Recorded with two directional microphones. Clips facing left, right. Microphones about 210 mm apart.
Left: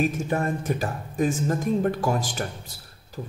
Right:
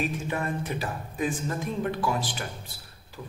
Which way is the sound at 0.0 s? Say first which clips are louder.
Left 5 dB; 40° left (ahead or behind).